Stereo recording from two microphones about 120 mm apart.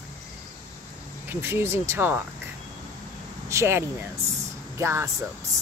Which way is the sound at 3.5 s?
25° right (ahead or behind).